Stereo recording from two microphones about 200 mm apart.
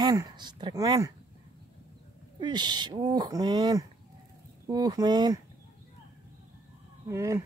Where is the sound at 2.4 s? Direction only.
20° right (ahead or behind).